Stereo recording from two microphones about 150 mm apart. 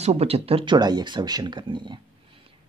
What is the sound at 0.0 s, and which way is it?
Speech, 45° right (ahead or behind).